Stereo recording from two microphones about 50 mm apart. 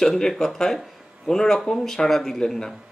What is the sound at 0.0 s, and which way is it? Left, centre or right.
Speech, centre.